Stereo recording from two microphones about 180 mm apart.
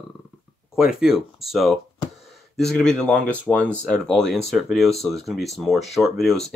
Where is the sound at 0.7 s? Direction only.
5° right (ahead or behind).